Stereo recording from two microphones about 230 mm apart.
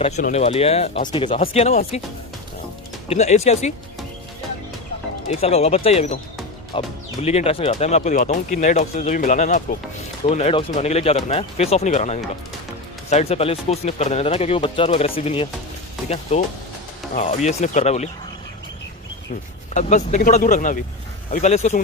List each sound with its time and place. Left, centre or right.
0.0 s speech: left
3.1 s speech: left
5.3 s speech: left
19.7 s speech: left